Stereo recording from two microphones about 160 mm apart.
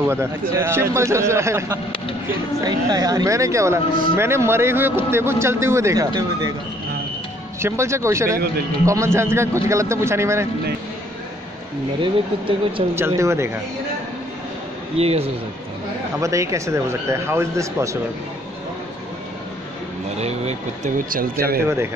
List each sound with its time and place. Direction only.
0.0 s a man's voice: 15° right (ahead or behind)
7.6 s a man's voice: 15° right (ahead or behind)
12.0 s speech: 35° right (ahead or behind)
12.9 s a man's voice: 15° right (ahead or behind)
15.0 s speech: 40° right (ahead or behind)
16.2 s speech: 20° right (ahead or behind)
20.2 s speech: 45° right (ahead or behind)
21.0 s speech: 60° right (ahead or behind)